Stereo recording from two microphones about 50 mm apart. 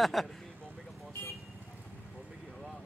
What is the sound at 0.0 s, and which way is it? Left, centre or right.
Speech, centre.